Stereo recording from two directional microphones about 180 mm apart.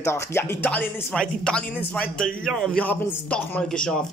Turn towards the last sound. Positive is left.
turn(degrees=5)  # may be behind; listen again after turning